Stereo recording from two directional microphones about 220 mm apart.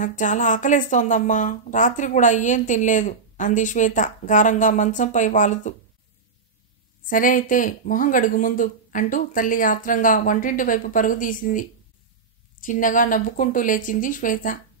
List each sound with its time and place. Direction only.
0.0 s speech: 35° left (ahead or behind)
7.1 s speech: 35° left (ahead or behind)